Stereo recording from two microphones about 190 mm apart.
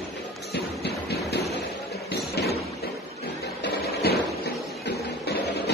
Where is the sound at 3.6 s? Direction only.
55° left (ahead or behind).